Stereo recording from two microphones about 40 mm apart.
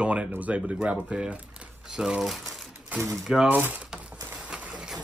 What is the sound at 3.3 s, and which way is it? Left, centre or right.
Speech, right.